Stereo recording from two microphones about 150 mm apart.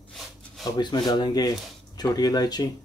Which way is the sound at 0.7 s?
30° left (ahead or behind).